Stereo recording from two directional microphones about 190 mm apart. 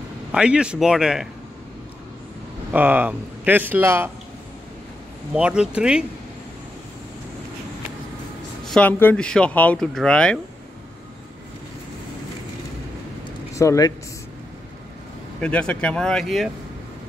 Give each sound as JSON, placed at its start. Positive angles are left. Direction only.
{"t": 0.3, "sound": "speech", "side_deg": -5}
{"t": 2.7, "sound": "speech", "side_deg": -10}
{"t": 5.3, "sound": "speech", "side_deg": -5}
{"t": 8.6, "sound": "speech", "side_deg": 5}
{"t": 13.6, "sound": "speech", "side_deg": 15}
{"t": 15.4, "sound": "speech", "side_deg": 5}